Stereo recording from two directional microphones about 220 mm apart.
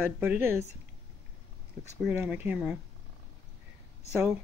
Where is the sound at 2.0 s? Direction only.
5° right (ahead or behind).